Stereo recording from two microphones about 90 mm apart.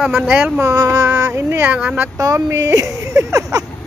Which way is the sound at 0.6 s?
35° right (ahead or behind).